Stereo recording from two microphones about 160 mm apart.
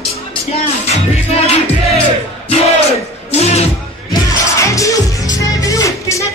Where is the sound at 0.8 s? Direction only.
40° left (ahead or behind).